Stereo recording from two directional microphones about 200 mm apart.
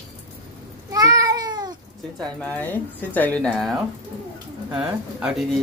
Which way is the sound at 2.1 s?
5° left (ahead or behind).